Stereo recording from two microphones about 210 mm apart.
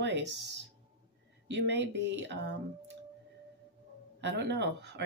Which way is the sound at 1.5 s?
55° right (ahead or behind).